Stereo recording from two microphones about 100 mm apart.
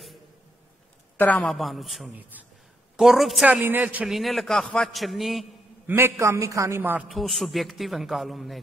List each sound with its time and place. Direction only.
1.1 s a sound: 15° left (ahead or behind)
1.4 s a man's voice: centre (ahead or behind)
3.6 s a man's voice: 20° right (ahead or behind)
4.1 s a man's voice: centre (ahead or behind)
5.9 s a man's voice: 25° right (ahead or behind)
6.8 s a man's voice: 20° right (ahead or behind)
7.1 s a man's voice: centre (ahead or behind)